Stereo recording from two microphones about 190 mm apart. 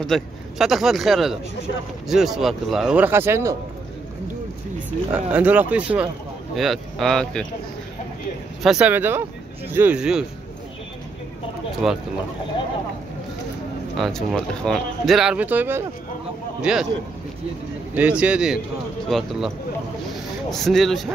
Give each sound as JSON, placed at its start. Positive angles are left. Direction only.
{"t": 0.0, "sound": "speech", "side_deg": 0}
{"t": 5.1, "sound": "speech", "side_deg": -10}
{"t": 8.6, "sound": "speech", "side_deg": -5}
{"t": 11.8, "sound": "speech", "side_deg": 0}
{"t": 13.9, "sound": "speech", "side_deg": 0}
{"t": 17.9, "sound": "speech", "side_deg": -5}